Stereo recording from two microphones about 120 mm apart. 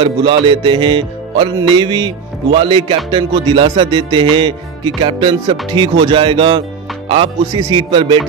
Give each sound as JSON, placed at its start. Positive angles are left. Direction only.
{"t": 0.0, "sound": "music", "side_deg": -45}